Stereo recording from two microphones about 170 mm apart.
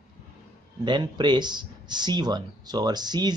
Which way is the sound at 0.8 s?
25° right (ahead or behind).